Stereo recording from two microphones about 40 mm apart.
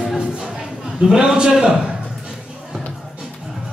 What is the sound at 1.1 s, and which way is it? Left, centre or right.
Speech, centre.